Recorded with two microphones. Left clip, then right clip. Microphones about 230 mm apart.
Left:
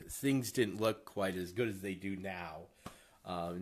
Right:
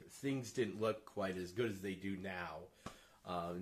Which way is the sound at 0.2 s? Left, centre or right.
Left.